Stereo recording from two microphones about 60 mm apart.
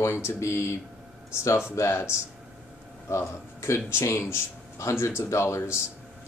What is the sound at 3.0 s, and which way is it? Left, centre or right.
Speech, left.